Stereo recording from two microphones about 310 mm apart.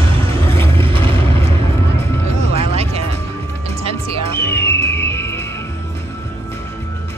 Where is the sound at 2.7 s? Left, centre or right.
Centre.